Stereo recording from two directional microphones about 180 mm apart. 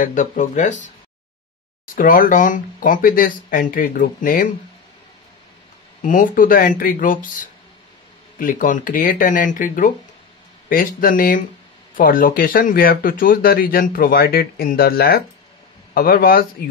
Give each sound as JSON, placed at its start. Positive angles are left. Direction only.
{"t": 0.0, "sound": "speech", "side_deg": 45}
{"t": 2.0, "sound": "speech", "side_deg": 50}
{"t": 6.0, "sound": "speech", "side_deg": 50}
{"t": 8.4, "sound": "speech", "side_deg": 50}